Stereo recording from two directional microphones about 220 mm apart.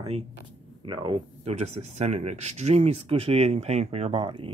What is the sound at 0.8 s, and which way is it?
Speech, 20° right (ahead or behind).